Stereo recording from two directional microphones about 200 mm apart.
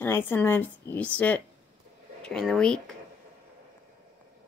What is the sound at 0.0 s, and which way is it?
A woman's voice, 10° left (ahead or behind).